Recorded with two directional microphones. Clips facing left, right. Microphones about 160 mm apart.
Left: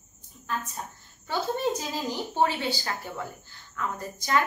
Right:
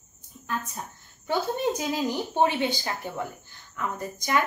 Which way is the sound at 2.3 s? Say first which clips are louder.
Right 2 dB; 20° right (ahead or behind).